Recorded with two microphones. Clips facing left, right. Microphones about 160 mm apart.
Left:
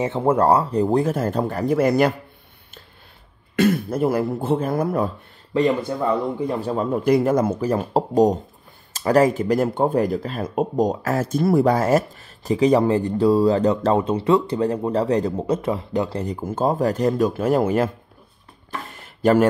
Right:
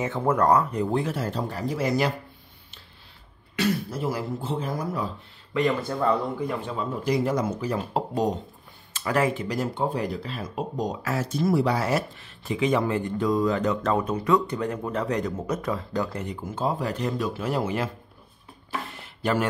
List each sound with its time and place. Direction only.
0.0 s speech: 25° left (ahead or behind); by 2.1 s 55° left (ahead or behind)
3.5 s speech: 50° left (ahead or behind)
5.5 s speech: 30° left (ahead or behind)
5.9 s speech: 15° left (ahead or behind)
6.5 s speech: 40° left (ahead or behind)
18.9 s a sound: 45° left (ahead or behind)